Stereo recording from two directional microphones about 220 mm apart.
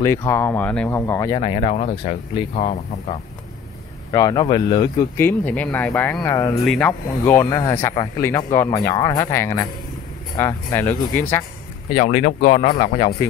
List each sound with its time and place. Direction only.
0.0 s speech: 15° left (ahead or behind)
1.4 s speech: 30° left (ahead or behind)
4.1 s speech: 15° left (ahead or behind)
5.1 s speech: 10° left (ahead or behind)
6.6 s speech: centre (ahead or behind)
11.9 s speech: 30° left (ahead or behind)